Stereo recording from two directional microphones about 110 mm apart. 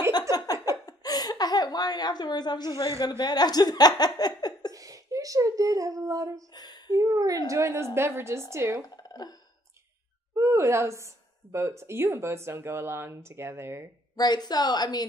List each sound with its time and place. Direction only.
0.3 s laughter: 35° left (ahead or behind)
3.0 s speech: 40° left (ahead or behind)
4.7 s speech: 30° right (ahead or behind)
6.5 s a sound: 40° left (ahead or behind)
6.9 s speech: 30° right (ahead or behind)
8.8 s a sound: 35° left (ahead or behind)
10.3 s a woman's voice: 25° right (ahead or behind)
14.1 s speech: 40° left (ahead or behind)